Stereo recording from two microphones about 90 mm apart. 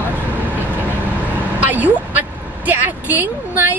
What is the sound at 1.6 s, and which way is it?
A woman's voice, 20° right (ahead or behind).